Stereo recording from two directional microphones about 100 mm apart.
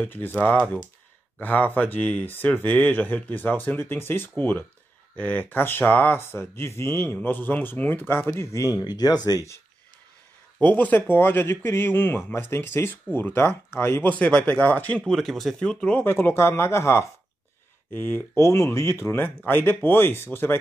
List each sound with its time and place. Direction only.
0.0 s speech: 20° left (ahead or behind)
8.7 s speech: 40° left (ahead or behind)
10.6 s speech: 15° left (ahead or behind)
15.1 s speech: centre (ahead or behind)
16.1 s speech: 25° left (ahead or behind)